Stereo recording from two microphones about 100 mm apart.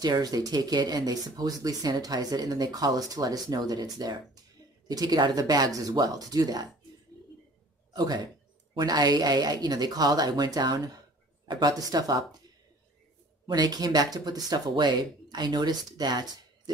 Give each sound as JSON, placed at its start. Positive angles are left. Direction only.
{"t": 0.0, "sound": "speech", "side_deg": -40}
{"t": 7.9, "sound": "a man's voice", "side_deg": -45}
{"t": 13.5, "sound": "speech", "side_deg": -40}